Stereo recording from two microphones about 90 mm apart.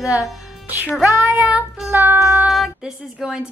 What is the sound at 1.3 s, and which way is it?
Speech, 15° right (ahead or behind).